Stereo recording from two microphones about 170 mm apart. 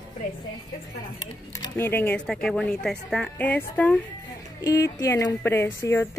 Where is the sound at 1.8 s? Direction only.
10° left (ahead or behind).